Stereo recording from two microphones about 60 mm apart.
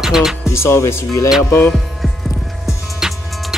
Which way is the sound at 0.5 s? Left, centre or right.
Left.